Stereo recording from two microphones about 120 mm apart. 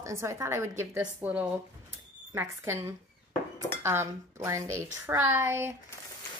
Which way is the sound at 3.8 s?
20° right (ahead or behind).